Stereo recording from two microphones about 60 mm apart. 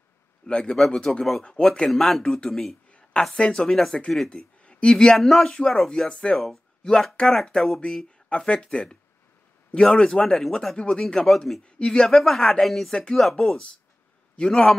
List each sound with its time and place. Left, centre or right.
0.5 s a woman's voice: centre
2.9 s a sound: centre
3.3 s speech: centre
3.6 s a woman's voice: centre
9.8 s a woman's voice: centre
11.6 s a woman's voice: centre
12.9 s speech: centre
13.2 s a woman's voice: centre